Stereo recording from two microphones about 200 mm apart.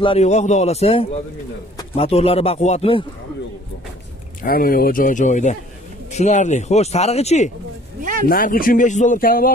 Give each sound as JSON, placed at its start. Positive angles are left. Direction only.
{"t": 0.0, "sound": "speech", "side_deg": 30}
{"t": 4.4, "sound": "speech", "side_deg": 45}
{"t": 8.0, "sound": "a sound", "side_deg": -40}
{"t": 8.3, "sound": "speech", "side_deg": 45}